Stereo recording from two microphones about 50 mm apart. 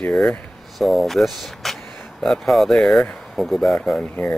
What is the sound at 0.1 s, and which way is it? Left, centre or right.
Speech, left.